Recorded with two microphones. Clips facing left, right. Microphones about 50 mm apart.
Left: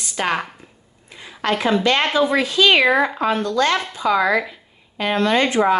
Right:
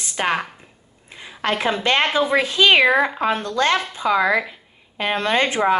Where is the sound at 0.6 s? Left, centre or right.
Right.